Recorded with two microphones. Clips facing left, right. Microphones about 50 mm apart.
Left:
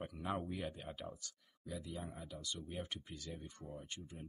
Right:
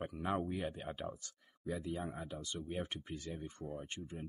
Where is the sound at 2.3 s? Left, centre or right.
Right.